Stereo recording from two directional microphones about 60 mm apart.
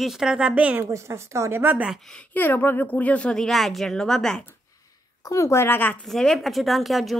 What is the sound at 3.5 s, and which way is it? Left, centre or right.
Speech, centre.